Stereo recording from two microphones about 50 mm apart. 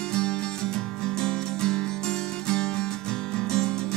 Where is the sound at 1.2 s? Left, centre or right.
Centre.